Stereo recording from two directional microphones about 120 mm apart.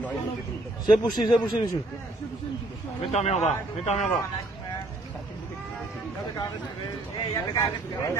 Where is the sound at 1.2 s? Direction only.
35° left (ahead or behind).